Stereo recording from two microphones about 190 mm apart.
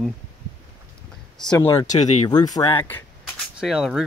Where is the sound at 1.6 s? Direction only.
20° left (ahead or behind).